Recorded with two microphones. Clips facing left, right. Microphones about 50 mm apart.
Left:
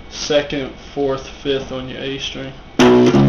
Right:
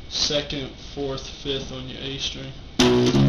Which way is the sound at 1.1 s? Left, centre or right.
Left.